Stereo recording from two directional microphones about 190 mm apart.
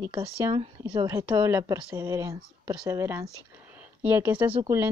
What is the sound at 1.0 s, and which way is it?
Speech, 15° right (ahead or behind).